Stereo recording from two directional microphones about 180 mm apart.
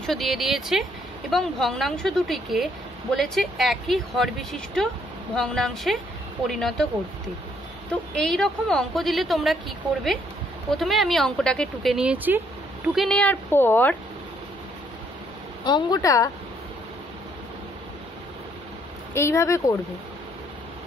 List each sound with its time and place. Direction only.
0.0 s a woman's voice: centre (ahead or behind)
7.9 s a woman's voice: 5° left (ahead or behind)
12.9 s speech: centre (ahead or behind)
15.6 s speech: 25° left (ahead or behind)
19.1 s speech: 15° left (ahead or behind)